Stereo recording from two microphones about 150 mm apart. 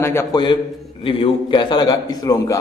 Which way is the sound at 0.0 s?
15° left (ahead or behind).